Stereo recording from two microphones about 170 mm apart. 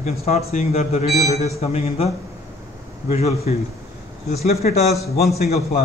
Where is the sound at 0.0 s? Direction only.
40° left (ahead or behind).